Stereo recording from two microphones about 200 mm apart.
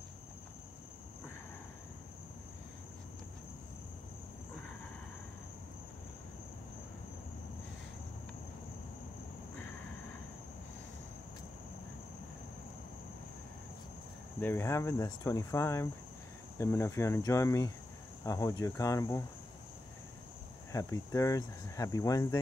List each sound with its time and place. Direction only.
14.4 s speech: 10° left (ahead or behind)
20.7 s speech: 15° left (ahead or behind)